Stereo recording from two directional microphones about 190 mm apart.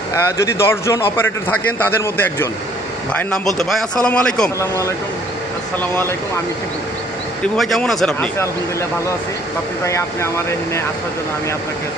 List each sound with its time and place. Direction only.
0.1 s a man's voice: 15° left (ahead or behind)
7.4 s speech: centre (ahead or behind)
9.8 s a man's voice: 15° left (ahead or behind)